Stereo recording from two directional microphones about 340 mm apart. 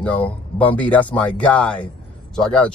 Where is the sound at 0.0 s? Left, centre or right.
Centre.